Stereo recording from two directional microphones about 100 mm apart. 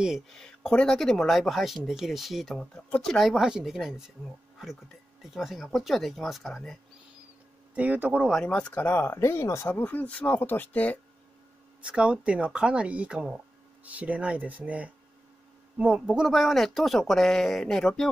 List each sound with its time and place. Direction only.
0.3 s speech: 5° left (ahead or behind)
5.2 s speech: 5° right (ahead or behind)
7.7 s speech: 15° right (ahead or behind)
8.5 s speech: 15° left (ahead or behind)
11.8 s speech: 10° right (ahead or behind)